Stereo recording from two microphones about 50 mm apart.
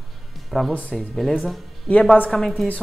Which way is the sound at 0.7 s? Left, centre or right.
Left.